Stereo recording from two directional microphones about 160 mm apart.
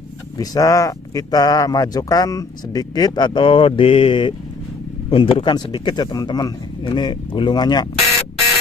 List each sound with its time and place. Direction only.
0.4 s speech: 20° left (ahead or behind)